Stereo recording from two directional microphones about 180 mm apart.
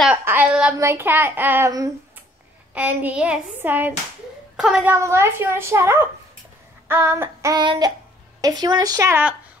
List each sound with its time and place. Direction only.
0.2 s a woman's voice: 10° right (ahead or behind)
4.9 s speech: 15° right (ahead or behind)